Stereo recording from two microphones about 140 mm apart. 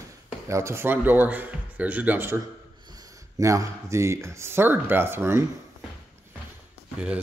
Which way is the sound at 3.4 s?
25° right (ahead or behind).